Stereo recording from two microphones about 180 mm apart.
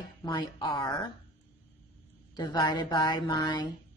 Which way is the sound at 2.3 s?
25° left (ahead or behind).